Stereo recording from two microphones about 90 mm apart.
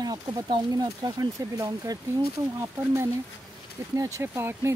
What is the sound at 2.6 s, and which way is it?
Speech, 30° right (ahead or behind).